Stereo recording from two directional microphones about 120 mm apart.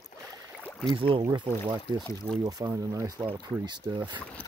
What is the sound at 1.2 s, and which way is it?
Speech, 35° right (ahead or behind).